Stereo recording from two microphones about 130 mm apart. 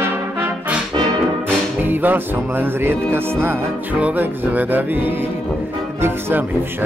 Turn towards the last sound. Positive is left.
turn(degrees=-20)  # may be behind; listen again after turning